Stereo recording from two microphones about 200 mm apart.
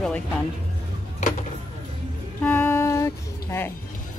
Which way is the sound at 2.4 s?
10° left (ahead or behind).